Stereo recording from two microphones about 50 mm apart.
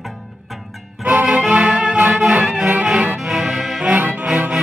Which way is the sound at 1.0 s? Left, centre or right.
Right.